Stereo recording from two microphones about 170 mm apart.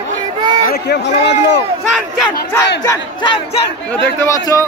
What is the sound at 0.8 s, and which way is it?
Speech, 75° left (ahead or behind).